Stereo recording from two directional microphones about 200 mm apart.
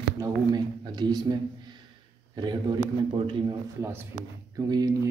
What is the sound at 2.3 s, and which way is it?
A man's voice, 20° right (ahead or behind).